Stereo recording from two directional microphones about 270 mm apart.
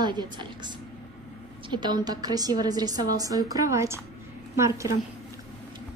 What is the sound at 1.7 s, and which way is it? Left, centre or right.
A woman's voice, centre.